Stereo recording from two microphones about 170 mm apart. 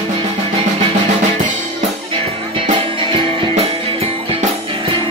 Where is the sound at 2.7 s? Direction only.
30° right (ahead or behind).